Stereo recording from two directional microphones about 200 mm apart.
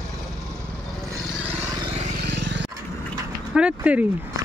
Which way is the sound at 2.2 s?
60° right (ahead or behind).